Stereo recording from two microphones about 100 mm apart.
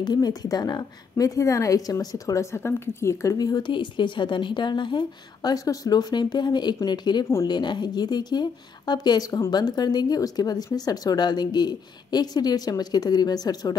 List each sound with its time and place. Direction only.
0.0 s a woman's voice: 40° left (ahead or behind)